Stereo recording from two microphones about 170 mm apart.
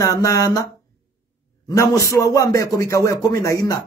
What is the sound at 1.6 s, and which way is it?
A man's voice, 20° left (ahead or behind).